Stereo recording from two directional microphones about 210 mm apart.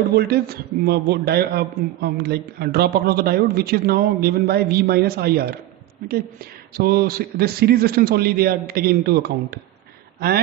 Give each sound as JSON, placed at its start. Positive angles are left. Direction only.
{"t": 0.1, "sound": "a man's voice", "side_deg": -50}
{"t": 6.8, "sound": "a man's voice", "side_deg": -45}